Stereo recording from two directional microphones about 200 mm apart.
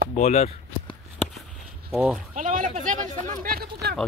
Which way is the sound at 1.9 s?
5° right (ahead or behind).